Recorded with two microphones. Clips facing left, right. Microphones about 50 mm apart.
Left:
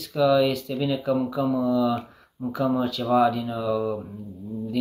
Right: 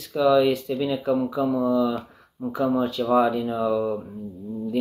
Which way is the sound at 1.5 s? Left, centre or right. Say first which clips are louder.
Right 2 dB; right.